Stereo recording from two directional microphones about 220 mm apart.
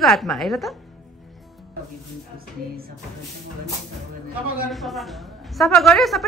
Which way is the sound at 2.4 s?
40° right (ahead or behind).